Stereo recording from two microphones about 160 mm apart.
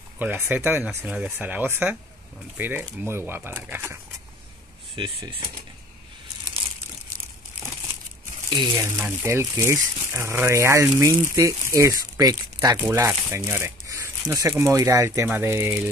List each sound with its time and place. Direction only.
0.2 s speech: 10° right (ahead or behind)
4.9 s speech: 30° right (ahead or behind)
8.5 s speech: 30° right (ahead or behind)
8.8 s speech: 15° right (ahead or behind)